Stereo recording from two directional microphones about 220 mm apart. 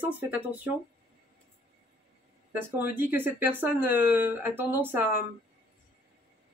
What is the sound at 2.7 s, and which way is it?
Speech, 10° right (ahead or behind).